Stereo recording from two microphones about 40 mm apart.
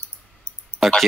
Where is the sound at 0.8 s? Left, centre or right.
Centre.